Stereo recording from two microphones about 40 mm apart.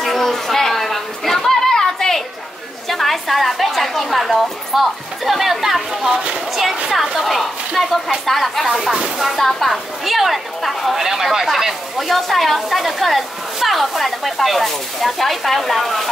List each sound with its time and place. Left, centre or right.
0.0 s chatter: centre
2.9 s a woman's voice: centre
6.0 s speech: right
7.2 s a woman's voice: centre